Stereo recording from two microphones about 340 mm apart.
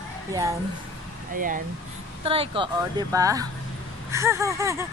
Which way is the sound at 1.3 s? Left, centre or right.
Right.